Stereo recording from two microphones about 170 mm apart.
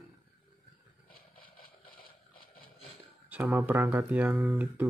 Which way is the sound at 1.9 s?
60° left (ahead or behind).